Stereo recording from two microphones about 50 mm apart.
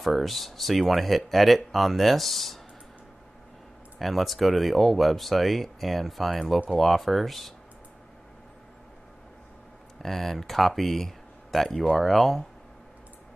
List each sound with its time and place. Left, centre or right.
0.0 s speech: centre
4.0 s speech: centre
10.0 s speech: centre